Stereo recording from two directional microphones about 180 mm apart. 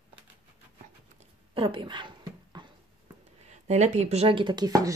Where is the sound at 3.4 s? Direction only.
40° right (ahead or behind); by 4.9 s 20° right (ahead or behind).